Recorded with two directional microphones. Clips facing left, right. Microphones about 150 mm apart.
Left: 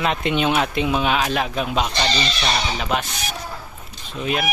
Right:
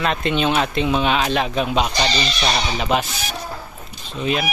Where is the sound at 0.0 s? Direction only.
15° left (ahead or behind).